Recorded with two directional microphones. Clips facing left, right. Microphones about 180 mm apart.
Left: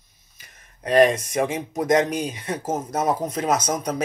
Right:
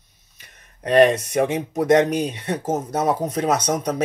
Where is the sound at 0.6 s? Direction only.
35° right (ahead or behind).